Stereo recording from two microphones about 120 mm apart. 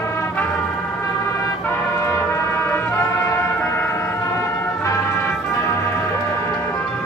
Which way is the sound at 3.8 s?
20° left (ahead or behind).